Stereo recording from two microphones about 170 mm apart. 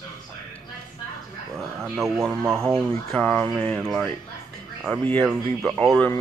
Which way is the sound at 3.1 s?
5° left (ahead or behind).